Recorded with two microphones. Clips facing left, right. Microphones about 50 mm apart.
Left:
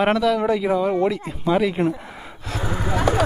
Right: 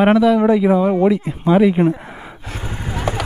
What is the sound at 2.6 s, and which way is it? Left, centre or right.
Vehicle, left.